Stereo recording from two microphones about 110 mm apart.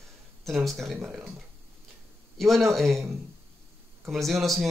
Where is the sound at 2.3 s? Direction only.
Centre (ahead or behind).